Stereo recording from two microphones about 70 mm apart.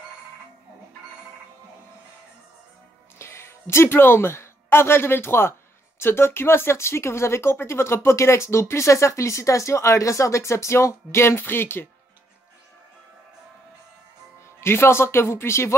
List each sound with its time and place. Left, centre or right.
3.2 s speech: left
14.6 s speech: left